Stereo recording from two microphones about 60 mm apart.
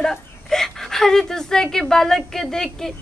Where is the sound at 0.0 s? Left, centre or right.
Centre.